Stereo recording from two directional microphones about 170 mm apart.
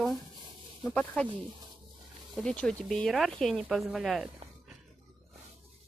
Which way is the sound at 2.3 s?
5° left (ahead or behind).